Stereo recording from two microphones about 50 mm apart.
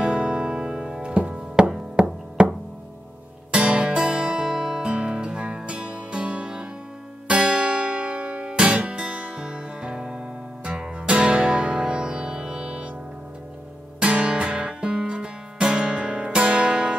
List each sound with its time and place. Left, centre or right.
0.0 s music: centre
3.5 s music: right
13.9 s music: centre